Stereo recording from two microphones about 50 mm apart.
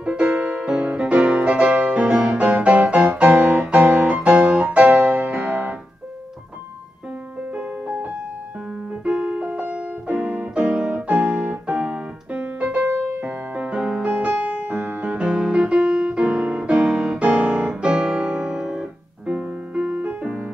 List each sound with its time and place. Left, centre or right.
0.0 s music: right
4.6 s keyboard: right
7.5 s music: right
9.0 s piano: right
11.0 s music: right
12.3 s keyboard: right
12.6 s music: right
15.2 s music: centre
17.2 s piano: right
19.2 s music: right